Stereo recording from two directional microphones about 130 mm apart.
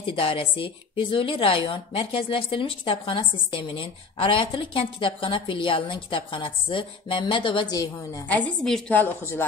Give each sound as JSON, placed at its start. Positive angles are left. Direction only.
{"t": 0.0, "sound": "a woman's voice", "side_deg": 40}
{"t": 8.3, "sound": "a woman's voice", "side_deg": 5}